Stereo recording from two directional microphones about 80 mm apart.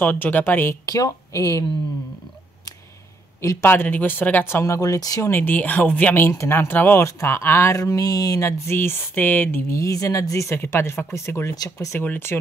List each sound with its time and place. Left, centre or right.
0.0 s speech: left
0.8 s speech: left
3.6 s speech: left
4.7 s speech: left
5.3 s speech: left
6.3 s a sound: left
6.7 s speech: left
7.0 s a sound: left
7.8 s a sound: left
10.5 s a sound: left
11.5 s speech: left
12.0 s speech: left